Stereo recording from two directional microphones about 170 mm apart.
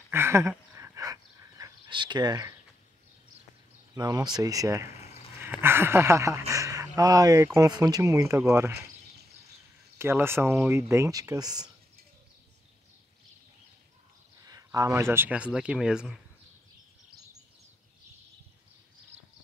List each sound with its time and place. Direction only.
0.1 s a sound: 15° right (ahead or behind)
3.9 s speech: 20° right (ahead or behind)
9.9 s speech: 15° right (ahead or behind)
14.4 s speech: 20° right (ahead or behind)